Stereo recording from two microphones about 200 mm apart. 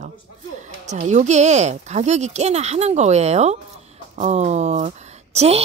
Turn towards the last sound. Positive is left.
turn(degrees=-35)  # may be behind; listen again after turning